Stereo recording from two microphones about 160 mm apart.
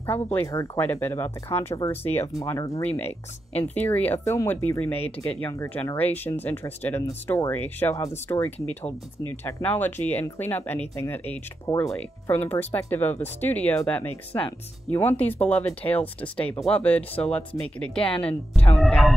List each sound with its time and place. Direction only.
0.0 s speech: 10° left (ahead or behind)